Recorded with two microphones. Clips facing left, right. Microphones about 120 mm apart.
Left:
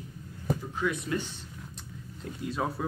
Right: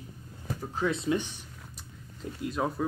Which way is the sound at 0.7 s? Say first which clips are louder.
Right 6 dB; 30° right (ahead or behind).